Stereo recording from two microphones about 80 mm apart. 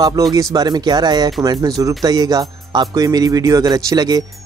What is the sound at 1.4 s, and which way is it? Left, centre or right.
Speech, right.